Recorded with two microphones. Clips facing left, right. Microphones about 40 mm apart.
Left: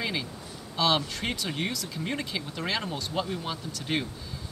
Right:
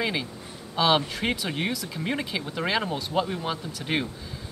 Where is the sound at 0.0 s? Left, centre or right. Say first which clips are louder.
Right 3 dB; centre.